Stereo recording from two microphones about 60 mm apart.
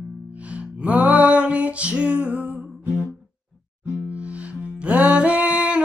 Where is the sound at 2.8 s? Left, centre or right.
Right.